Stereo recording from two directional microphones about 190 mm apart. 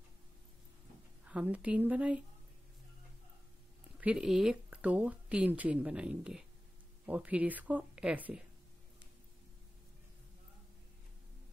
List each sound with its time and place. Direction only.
1.2 s speech: 5° right (ahead or behind)
4.0 s speech: 5° right (ahead or behind)